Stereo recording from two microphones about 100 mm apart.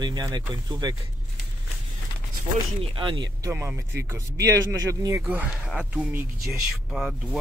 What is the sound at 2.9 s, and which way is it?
Speech, 50° right (ahead or behind).